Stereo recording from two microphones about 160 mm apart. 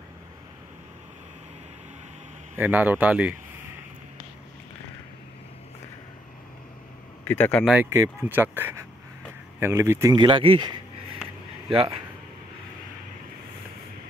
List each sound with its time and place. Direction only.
2.5 s speech: 10° right (ahead or behind)
7.2 s speech: 10° left (ahead or behind)
7.6 s speech: 10° right (ahead or behind); by 10.8 s 30° right (ahead or behind)